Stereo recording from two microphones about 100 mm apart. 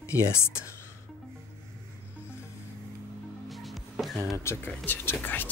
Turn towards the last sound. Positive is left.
turn(degrees=20)  # may be behind; listen again after turning